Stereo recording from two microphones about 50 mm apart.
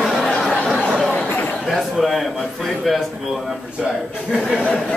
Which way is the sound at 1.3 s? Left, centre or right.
Left.